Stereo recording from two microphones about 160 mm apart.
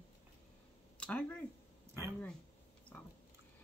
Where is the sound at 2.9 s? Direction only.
10° left (ahead or behind).